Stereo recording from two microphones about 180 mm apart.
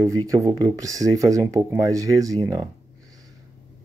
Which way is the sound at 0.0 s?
20° right (ahead or behind).